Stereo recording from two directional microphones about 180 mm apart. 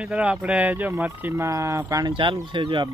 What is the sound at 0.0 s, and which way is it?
Speech, 5° right (ahead or behind).